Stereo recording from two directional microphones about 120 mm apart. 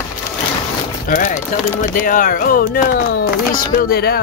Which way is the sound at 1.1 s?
75° left (ahead or behind).